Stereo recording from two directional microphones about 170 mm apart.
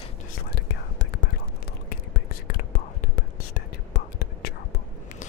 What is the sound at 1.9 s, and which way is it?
Whispering, 65° left (ahead or behind).